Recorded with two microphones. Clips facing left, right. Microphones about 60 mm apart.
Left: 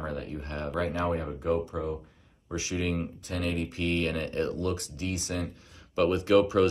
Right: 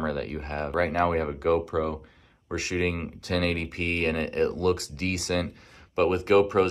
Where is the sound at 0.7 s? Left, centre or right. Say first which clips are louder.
Right 5 dB; right.